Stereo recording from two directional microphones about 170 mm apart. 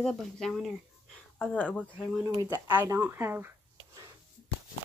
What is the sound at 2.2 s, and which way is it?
Speech, 15° right (ahead or behind).